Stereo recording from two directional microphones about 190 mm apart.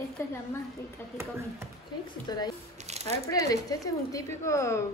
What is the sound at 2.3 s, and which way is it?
Speech, 20° left (ahead or behind).